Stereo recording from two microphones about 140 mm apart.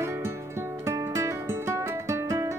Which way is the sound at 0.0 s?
20° right (ahead or behind).